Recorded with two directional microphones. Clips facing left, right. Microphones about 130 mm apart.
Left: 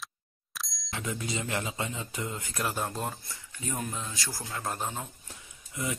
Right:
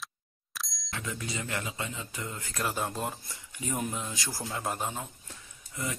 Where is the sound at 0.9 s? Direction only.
20° left (ahead or behind).